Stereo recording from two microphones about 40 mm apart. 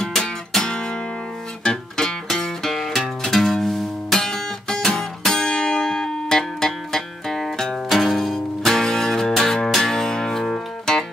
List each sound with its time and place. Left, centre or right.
0.0 s music: centre
0.6 s guitar: centre
1.6 s music: centre
2.7 s music: centre